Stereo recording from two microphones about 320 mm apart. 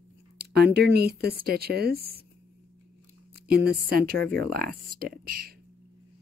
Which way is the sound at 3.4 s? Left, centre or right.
Right.